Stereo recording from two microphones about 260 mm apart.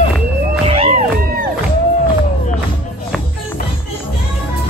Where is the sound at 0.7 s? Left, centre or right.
Right.